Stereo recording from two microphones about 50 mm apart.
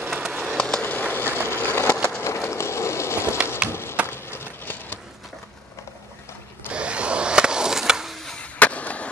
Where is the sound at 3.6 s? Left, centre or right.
Left.